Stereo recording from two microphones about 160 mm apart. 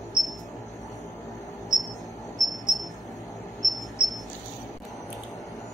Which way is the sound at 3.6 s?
Centre (ahead or behind).